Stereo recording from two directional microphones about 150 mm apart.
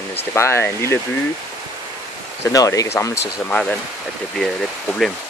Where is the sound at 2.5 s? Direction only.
25° left (ahead or behind).